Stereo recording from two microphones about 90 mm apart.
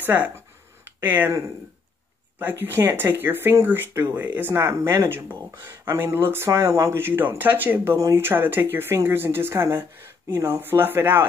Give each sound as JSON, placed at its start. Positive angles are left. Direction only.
{"t": 0.0, "sound": "speech", "side_deg": -20}
{"t": 0.8, "sound": "a sound", "side_deg": -20}
{"t": 2.3, "sound": "speech", "side_deg": -25}